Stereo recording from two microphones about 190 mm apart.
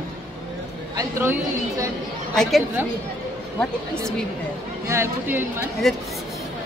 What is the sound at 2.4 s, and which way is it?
Speech, centre (ahead or behind).